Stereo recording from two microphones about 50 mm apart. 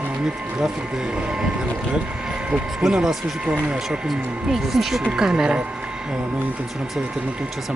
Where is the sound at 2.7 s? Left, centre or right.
Centre.